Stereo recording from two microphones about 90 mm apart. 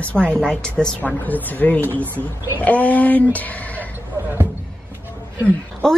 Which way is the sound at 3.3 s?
15° left (ahead or behind).